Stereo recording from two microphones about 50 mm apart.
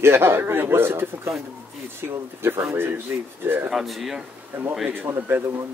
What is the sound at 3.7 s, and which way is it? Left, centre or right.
Speech, centre.